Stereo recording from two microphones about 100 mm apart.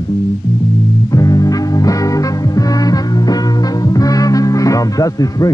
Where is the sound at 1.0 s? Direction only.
35° left (ahead or behind).